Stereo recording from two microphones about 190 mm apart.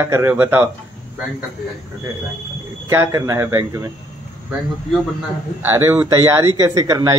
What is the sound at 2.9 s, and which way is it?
Speech, 15° right (ahead or behind).